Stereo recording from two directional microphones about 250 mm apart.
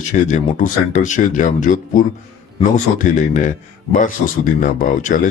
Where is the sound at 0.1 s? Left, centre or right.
Left.